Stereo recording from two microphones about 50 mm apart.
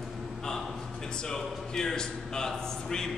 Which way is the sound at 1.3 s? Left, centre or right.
Centre.